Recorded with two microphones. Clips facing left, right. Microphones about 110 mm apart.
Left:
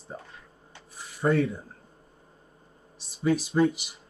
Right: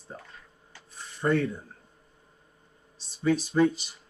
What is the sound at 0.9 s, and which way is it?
Rub, 10° left (ahead or behind).